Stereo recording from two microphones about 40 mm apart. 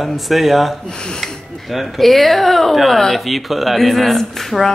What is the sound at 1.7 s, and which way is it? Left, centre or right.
Speech, centre.